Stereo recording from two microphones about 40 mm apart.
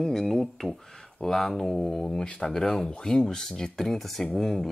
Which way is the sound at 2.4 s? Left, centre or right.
Centre.